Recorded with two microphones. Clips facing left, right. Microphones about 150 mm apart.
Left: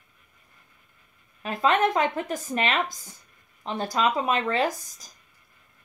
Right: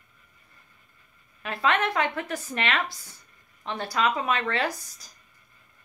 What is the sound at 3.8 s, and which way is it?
Speech, 40° left (ahead or behind).